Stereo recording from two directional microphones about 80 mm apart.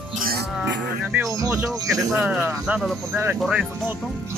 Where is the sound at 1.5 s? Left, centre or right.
Centre.